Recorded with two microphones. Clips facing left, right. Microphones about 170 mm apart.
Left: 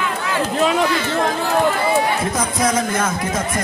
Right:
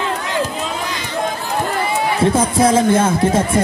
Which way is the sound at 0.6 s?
70° left (ahead or behind).